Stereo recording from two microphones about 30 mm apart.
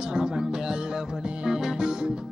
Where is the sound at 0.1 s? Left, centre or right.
Right.